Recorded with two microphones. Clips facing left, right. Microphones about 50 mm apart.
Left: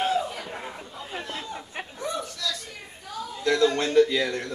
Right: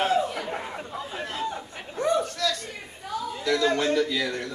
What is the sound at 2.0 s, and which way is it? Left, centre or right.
Chuckle, right.